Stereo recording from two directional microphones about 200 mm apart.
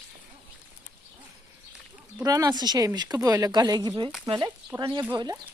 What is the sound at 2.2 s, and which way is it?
Speech, 15° right (ahead or behind).